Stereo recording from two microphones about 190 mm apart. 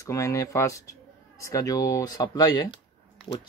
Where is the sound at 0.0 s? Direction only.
15° left (ahead or behind).